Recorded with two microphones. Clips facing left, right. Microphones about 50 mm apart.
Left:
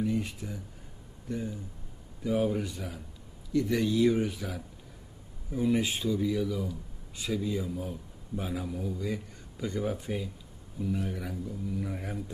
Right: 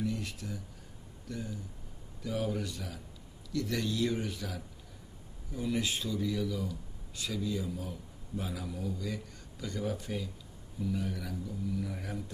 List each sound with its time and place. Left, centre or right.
0.0 s a man's voice: left